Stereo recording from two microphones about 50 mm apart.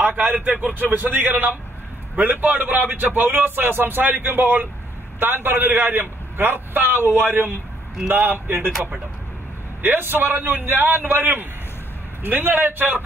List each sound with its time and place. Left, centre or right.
0.0 s a man's voice: right
9.8 s a man's voice: right